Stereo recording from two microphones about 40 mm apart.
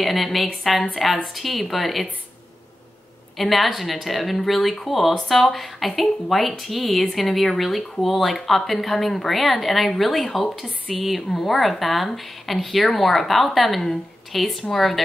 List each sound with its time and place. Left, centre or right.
0.0 s a woman's voice: centre
3.3 s a woman's voice: centre